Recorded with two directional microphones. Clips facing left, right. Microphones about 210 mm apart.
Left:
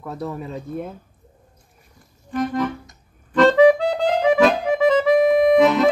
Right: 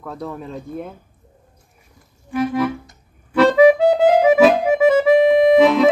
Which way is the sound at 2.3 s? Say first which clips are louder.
Right 3 dB; 10° right (ahead or behind).